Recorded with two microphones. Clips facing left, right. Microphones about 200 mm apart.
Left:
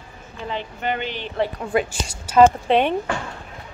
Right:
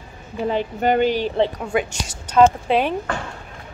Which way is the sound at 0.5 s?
45° right (ahead or behind).